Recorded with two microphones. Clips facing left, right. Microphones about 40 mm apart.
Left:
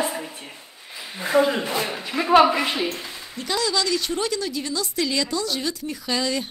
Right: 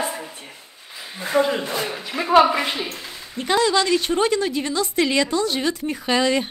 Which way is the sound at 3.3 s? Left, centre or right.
Right.